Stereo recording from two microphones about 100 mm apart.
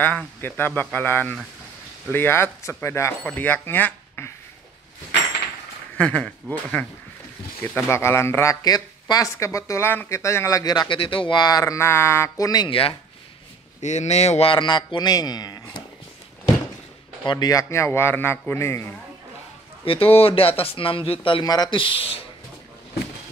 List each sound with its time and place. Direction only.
0.4 s speech: 20° left (ahead or behind)
5.9 s speech: 10° left (ahead or behind)
7.6 s speech: 25° left (ahead or behind)
8.6 s speech: 40° left (ahead or behind)
9.3 s speech: 30° left (ahead or behind)
10.6 s speech: 45° left (ahead or behind)
11.0 s speech: 60° left (ahead or behind); by 12.4 s 25° left (ahead or behind)
12.6 s speech: 65° left (ahead or behind)
14.1 s speech: 90° left; by 15.6 s 45° left (ahead or behind)
17.3 s speech: 40° left (ahead or behind)
19.8 s speech: 65° left (ahead or behind)
21.5 s speech: 40° left (ahead or behind)
21.7 s speech: 60° left (ahead or behind)